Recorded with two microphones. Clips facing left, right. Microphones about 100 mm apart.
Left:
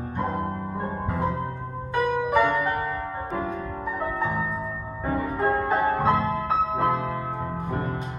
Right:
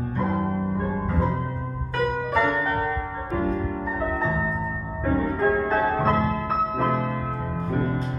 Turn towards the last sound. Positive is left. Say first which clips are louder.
# right 3 dB
turn(degrees=15)  # may be behind; listen again after turning